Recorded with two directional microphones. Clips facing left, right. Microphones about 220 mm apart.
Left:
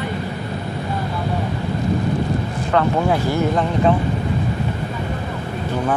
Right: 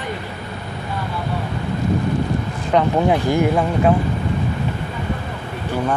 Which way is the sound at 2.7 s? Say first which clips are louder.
Right 2 dB; 15° right (ahead or behind).